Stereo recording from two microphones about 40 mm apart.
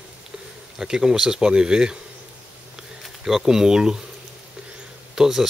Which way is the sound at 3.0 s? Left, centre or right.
Centre.